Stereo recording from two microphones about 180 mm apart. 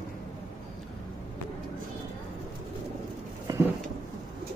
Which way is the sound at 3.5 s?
20° right (ahead or behind).